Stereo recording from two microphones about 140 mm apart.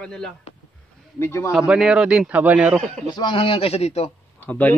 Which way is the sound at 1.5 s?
5° right (ahead or behind).